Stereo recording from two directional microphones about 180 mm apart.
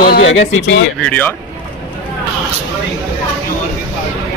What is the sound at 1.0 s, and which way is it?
Speech, 10° left (ahead or behind).